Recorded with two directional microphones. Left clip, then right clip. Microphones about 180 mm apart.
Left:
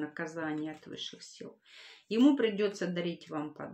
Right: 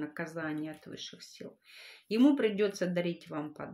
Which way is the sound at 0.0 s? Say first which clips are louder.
Left 1 dB; 35° right (ahead or behind).